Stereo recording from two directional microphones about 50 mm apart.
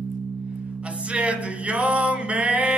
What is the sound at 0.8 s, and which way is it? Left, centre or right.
Music, right.